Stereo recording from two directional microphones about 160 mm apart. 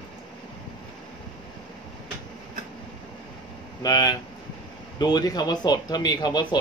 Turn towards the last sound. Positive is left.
turn(degrees=25)  # may be behind; listen again after turning